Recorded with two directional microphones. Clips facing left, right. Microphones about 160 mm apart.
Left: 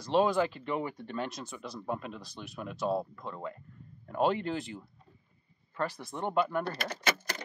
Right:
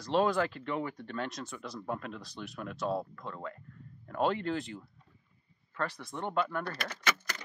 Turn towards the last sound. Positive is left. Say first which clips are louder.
# left 2 dB
turn(degrees=30)  # may be behind; listen again after turning